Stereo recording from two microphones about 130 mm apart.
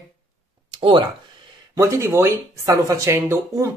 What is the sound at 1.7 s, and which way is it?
Speech, 20° right (ahead or behind).